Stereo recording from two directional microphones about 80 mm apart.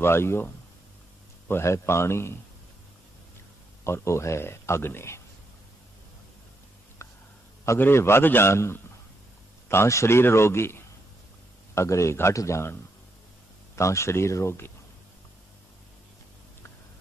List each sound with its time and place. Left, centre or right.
0.0 s speech: left
1.5 s speech: left
3.8 s speech: left
7.0 s a sound: left
7.8 s speech: left
13.7 s speech: left